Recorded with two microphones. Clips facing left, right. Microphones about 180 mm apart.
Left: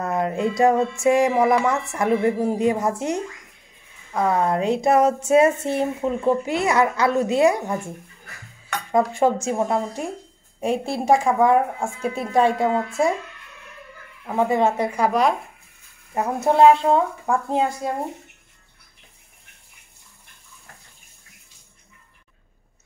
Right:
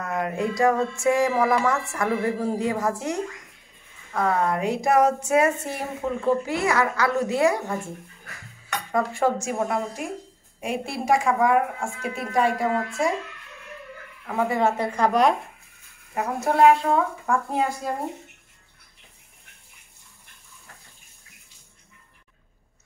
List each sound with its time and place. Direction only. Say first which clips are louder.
0.0 s speech: left 4 dB; 25° left (ahead or behind)
8.9 s speech: left 4 dB; 20° left (ahead or behind)
14.2 s speech: left 3 dB; 20° left (ahead or behind); by 15.3 s centre (ahead or behind)
16.2 s speech: left 3 dB; 25° left (ahead or behind)